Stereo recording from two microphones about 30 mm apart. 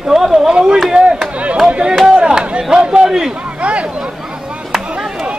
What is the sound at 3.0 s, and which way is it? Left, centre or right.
Speech, centre.